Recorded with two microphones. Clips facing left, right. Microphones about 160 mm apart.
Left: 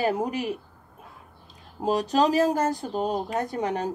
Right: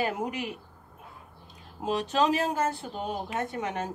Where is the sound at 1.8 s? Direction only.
40° left (ahead or behind).